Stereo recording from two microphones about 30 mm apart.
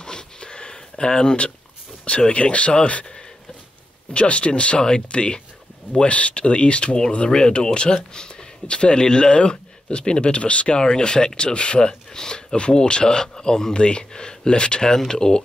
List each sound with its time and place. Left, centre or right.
0.0 s a sound: left
2.0 s speech: left
4.1 s speech: left
10.8 s speech: left
12.5 s speech: left